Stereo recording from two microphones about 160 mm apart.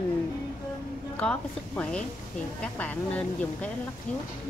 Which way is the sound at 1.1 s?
10° left (ahead or behind).